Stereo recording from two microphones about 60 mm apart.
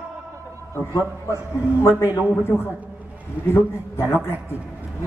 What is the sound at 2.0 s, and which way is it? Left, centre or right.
A man's voice, left.